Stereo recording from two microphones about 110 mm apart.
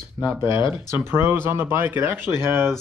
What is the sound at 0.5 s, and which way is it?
Speech, 45° left (ahead or behind).